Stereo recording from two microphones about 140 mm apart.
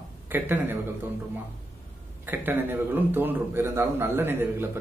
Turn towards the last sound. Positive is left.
turn(degrees=-15)  # may be behind; listen again after turning